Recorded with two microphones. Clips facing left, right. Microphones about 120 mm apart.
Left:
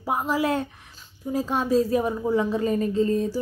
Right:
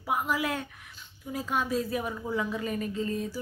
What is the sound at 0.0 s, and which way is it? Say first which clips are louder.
Speech: left 5 dB; 35° left (ahead or behind).